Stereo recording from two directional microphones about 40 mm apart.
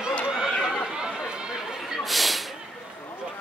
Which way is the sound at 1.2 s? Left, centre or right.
Right.